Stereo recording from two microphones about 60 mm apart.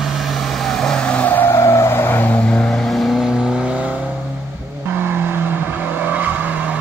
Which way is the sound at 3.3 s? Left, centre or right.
Centre.